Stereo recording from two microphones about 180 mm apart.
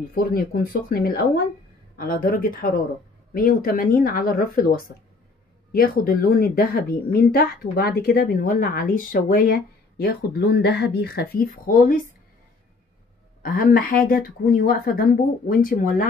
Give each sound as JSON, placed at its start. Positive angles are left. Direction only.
{"t": 0.1, "sound": "speech", "side_deg": 55}
{"t": 13.4, "sound": "speech", "side_deg": 55}